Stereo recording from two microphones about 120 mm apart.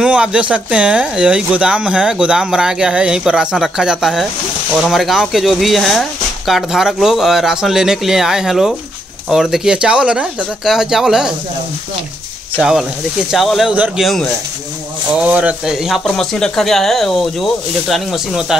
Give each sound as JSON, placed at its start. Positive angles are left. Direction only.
{"t": 0.0, "sound": "speech", "side_deg": -10}
{"t": 13.3, "sound": "speech", "side_deg": 0}
{"t": 15.2, "sound": "speech", "side_deg": -10}